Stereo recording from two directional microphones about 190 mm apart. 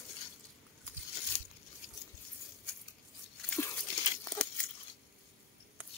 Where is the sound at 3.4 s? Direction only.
15° left (ahead or behind).